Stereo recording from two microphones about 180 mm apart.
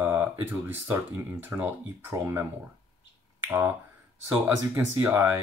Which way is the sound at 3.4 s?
10° right (ahead or behind).